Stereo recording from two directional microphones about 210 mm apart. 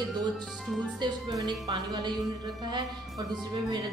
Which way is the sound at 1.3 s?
20° right (ahead or behind).